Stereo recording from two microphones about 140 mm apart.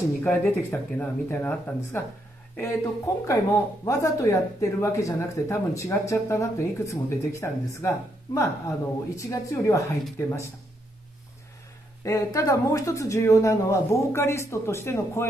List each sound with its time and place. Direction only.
0.2 s speech: 10° left (ahead or behind)
12.0 s speech: 25° left (ahead or behind)